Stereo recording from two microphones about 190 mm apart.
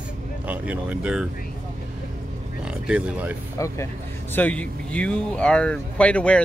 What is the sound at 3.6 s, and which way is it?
Speech, 15° left (ahead or behind).